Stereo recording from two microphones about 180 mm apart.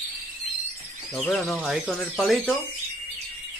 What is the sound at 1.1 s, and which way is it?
Speech, centre (ahead or behind).